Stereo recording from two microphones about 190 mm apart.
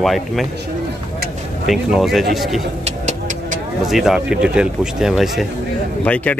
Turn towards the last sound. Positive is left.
turn(degrees=5)  # may be behind; listen again after turning